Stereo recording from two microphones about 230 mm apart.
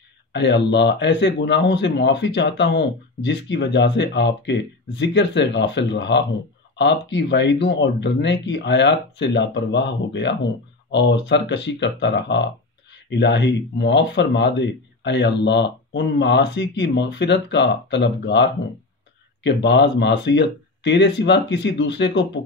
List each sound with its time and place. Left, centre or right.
0.3 s speech: left